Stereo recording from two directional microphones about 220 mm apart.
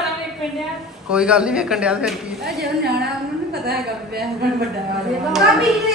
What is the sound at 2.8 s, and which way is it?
Speech, 45° right (ahead or behind).